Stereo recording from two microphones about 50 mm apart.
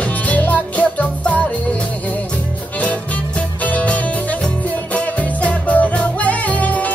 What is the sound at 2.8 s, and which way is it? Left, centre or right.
Music, left.